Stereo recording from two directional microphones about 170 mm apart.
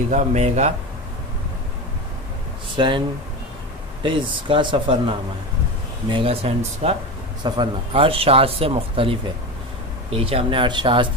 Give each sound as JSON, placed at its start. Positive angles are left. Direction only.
{"t": 0.1, "sound": "speech", "side_deg": -45}
{"t": 2.7, "sound": "speech", "side_deg": -30}
{"t": 4.0, "sound": "speech", "side_deg": -30}